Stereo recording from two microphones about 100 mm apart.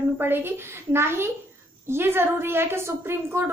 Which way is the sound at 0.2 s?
20° right (ahead or behind).